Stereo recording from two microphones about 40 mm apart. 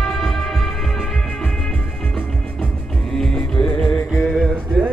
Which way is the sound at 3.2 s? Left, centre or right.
Centre.